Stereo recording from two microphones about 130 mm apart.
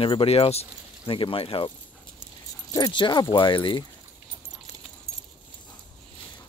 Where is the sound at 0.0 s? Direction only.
45° left (ahead or behind).